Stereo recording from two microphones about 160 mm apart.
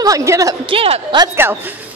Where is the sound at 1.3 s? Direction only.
15° right (ahead or behind).